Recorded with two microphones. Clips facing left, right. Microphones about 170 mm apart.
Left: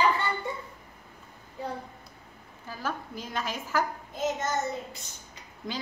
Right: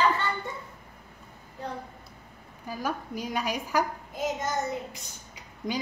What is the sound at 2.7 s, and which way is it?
A woman's voice, 15° right (ahead or behind).